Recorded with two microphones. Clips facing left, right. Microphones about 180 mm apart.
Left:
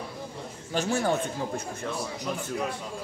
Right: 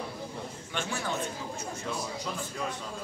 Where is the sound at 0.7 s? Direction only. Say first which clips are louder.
Left 8 dB; 45° left (ahead or behind).